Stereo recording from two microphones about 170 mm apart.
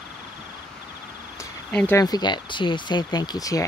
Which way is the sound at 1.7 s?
5° left (ahead or behind).